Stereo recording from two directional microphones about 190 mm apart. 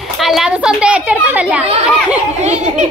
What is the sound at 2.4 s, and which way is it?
Giggle, 35° right (ahead or behind).